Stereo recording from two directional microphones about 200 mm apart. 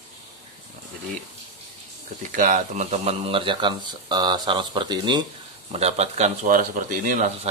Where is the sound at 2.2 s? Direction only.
40° right (ahead or behind); by 5.3 s 20° right (ahead or behind).